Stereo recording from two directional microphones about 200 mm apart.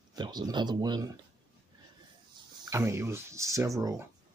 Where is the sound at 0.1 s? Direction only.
20° right (ahead or behind).